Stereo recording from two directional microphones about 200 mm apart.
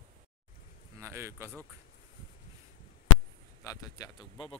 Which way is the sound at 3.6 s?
20° left (ahead or behind).